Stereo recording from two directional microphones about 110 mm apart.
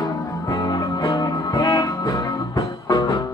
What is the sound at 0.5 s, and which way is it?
Music, 40° left (ahead or behind).